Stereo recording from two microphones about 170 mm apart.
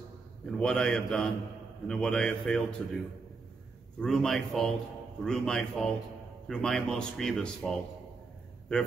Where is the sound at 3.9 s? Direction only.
5° left (ahead or behind).